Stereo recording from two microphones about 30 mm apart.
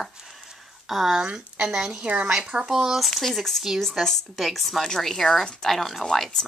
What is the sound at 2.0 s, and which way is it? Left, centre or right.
Speech, right.